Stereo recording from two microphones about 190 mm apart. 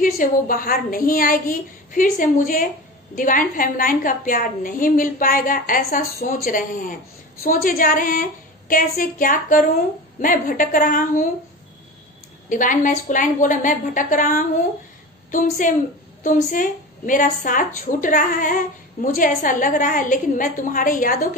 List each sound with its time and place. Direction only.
0.0 s a woman's voice: 45° left (ahead or behind)
12.4 s a woman's voice: 45° left (ahead or behind)